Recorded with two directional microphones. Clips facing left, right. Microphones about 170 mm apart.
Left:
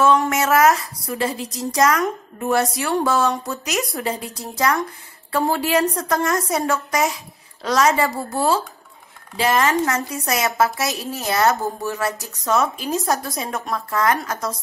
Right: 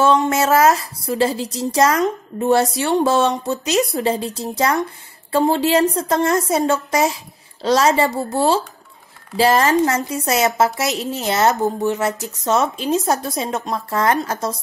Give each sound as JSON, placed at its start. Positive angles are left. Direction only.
{"t": 0.0, "sound": "a woman's voice", "side_deg": -25}
{"t": 9.9, "sound": "speech", "side_deg": -25}